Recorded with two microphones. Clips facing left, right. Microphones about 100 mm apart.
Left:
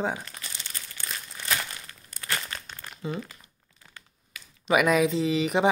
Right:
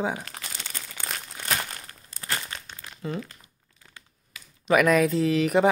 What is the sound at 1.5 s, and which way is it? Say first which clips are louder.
Crumpling: right 1 dB; 40° right (ahead or behind).